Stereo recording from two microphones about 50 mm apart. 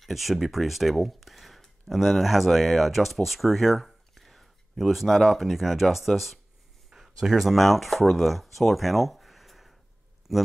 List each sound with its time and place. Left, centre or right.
0.0 s speech: centre